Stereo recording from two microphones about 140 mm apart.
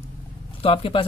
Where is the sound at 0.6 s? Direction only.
40° left (ahead or behind).